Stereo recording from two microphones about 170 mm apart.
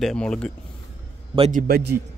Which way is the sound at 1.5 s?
60° right (ahead or behind).